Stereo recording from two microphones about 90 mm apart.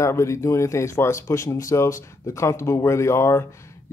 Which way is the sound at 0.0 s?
35° left (ahead or behind).